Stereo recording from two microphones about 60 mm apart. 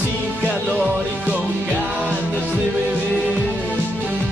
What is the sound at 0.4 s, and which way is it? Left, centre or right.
Music, centre.